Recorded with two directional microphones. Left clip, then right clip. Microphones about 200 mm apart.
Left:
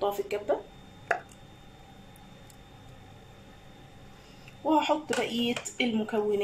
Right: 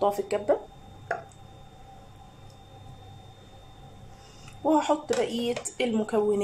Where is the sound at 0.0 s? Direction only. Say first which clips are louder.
Right 4 dB; 5° right (ahead or behind).